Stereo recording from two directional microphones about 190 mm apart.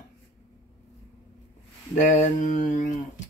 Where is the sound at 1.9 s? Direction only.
40° left (ahead or behind).